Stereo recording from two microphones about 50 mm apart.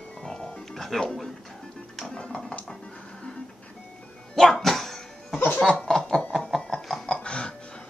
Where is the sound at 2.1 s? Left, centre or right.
Centre.